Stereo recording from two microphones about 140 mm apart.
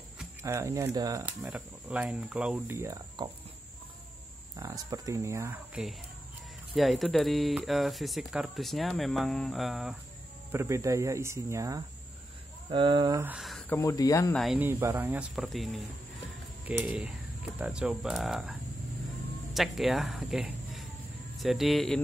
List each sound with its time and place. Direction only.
0.4 s speech: 20° right (ahead or behind)
1.2 s speech: 10° right (ahead or behind)
2.7 s speech: 20° right (ahead or behind)
3.2 s speech: 30° right (ahead or behind)
4.6 s speech: 25° right (ahead or behind)
5.7 s speech: centre (ahead or behind)
10.5 s speech: 20° right (ahead or behind)
12.7 s speech: 35° right (ahead or behind)
13.4 s a sound: centre (ahead or behind)
13.7 s speech: 20° left (ahead or behind)
14.3 s speech: centre (ahead or behind)
14.6 s speech: 15° right (ahead or behind)
15.3 s speech: centre (ahead or behind)